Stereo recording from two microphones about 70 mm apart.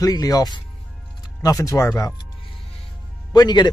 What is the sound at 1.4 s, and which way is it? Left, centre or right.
Speech, left.